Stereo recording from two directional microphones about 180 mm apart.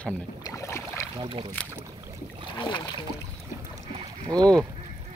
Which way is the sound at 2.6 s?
25° left (ahead or behind).